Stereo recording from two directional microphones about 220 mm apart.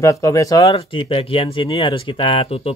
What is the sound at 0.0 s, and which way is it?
Speech, 15° left (ahead or behind).